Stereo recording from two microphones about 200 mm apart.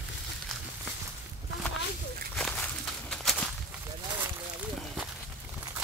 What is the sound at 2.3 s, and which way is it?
Walk, 5° left (ahead or behind).